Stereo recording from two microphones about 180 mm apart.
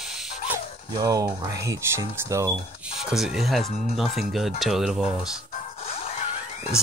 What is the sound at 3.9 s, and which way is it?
Speech, centre (ahead or behind).